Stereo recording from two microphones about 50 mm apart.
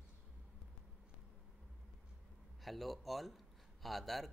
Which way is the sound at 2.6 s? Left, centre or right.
Centre.